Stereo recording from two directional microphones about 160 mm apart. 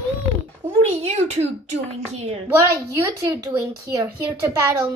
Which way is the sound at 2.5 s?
20° right (ahead or behind).